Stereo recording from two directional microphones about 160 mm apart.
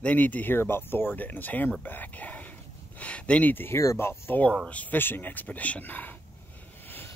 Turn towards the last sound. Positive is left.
turn(degrees=10)  # may be behind; listen again after turning